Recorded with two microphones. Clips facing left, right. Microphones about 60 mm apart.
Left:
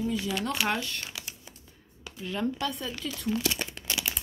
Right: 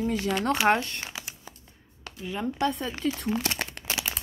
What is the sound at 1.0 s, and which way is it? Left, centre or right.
Crumpling, right.